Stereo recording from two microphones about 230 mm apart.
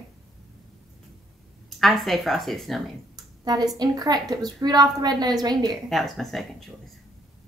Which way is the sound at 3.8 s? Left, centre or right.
Centre.